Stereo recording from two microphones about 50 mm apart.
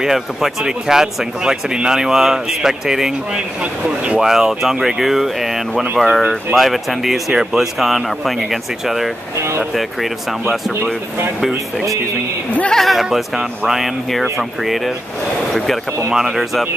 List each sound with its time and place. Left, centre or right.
0.0 s speech: centre
3.8 s speech: right
4.2 s speech: centre
12.7 s speech: centre